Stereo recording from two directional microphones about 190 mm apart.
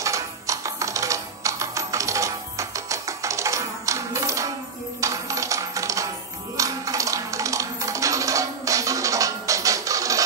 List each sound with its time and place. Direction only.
0.0 s music: 15° right (ahead or behind)
5.0 s coin: 15° right (ahead or behind)